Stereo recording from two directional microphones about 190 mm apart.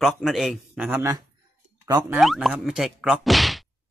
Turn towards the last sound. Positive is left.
turn(degrees=0)  # may be behind; listen again after turning